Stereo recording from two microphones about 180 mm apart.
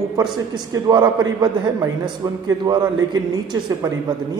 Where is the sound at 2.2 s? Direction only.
20° right (ahead or behind).